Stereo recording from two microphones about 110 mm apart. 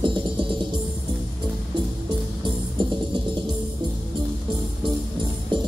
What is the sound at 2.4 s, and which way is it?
Music, 40° right (ahead or behind).